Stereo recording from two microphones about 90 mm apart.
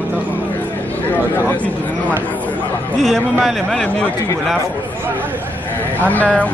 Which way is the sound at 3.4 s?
10° left (ahead or behind).